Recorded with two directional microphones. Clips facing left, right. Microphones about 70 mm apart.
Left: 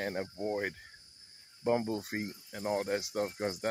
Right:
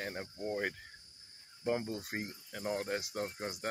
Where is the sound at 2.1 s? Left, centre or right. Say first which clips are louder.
Left 3 dB; centre.